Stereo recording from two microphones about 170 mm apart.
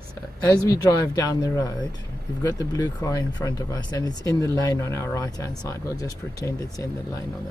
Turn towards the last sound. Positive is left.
turn(degrees=20)  # may be behind; listen again after turning